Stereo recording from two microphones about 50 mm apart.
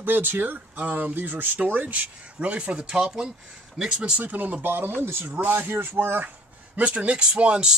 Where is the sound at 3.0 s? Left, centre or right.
Centre.